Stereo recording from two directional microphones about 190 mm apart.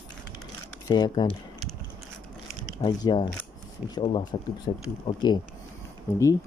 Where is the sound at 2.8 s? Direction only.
20° left (ahead or behind).